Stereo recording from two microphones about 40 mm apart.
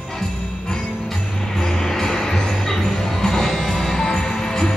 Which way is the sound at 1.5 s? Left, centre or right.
Centre.